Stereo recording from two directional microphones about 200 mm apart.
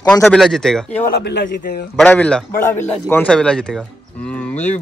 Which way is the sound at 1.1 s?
55° left (ahead or behind).